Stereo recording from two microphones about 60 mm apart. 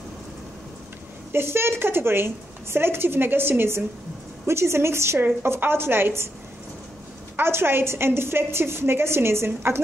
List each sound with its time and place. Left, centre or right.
1.3 s a woman's voice: right
7.3 s a woman's voice: right